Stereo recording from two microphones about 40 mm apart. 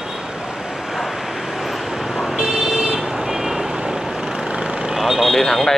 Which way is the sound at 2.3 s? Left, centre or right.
Centre.